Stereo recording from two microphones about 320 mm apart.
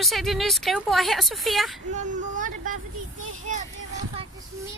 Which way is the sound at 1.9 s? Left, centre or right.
Right.